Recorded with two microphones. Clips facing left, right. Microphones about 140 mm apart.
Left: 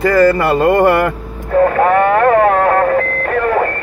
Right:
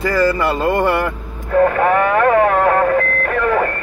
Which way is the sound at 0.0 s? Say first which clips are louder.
Left 5 dB; 55° left (ahead or behind).